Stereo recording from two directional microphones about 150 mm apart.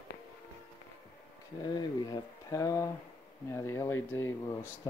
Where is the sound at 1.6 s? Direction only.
30° left (ahead or behind).